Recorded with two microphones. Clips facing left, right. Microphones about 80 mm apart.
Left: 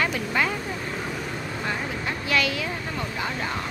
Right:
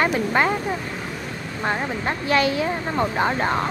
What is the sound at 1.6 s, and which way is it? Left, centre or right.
Speech, right.